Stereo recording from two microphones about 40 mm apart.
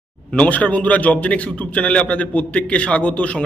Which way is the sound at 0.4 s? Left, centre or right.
Left.